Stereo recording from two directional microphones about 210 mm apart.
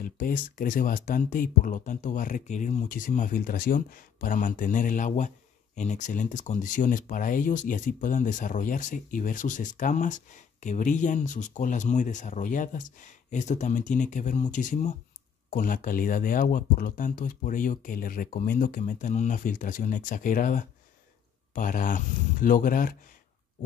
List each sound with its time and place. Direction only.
0.0 s speech: 40° left (ahead or behind)